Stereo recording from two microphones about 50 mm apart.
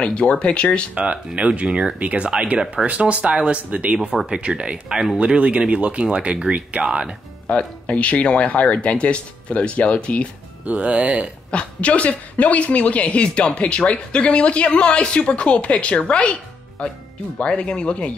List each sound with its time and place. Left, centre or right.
0.0 s a woman's voice: left
0.9 s speech: right
7.4 s a woman's voice: left
10.7 s speech: right
11.5 s a woman's voice: left